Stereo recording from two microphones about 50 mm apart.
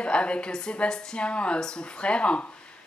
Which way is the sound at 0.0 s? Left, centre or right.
Left.